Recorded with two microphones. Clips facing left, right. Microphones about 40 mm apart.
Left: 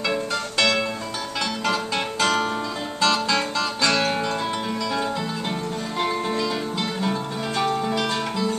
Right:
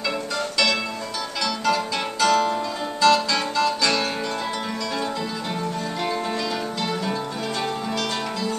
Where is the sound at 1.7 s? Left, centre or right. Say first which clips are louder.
Right 3 dB; left.